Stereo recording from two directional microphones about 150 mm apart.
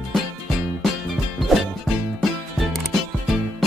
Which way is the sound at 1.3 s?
Centre (ahead or behind).